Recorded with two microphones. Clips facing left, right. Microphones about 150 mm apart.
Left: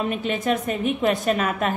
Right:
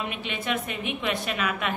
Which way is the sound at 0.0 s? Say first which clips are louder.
Left 8 dB; 40° left (ahead or behind).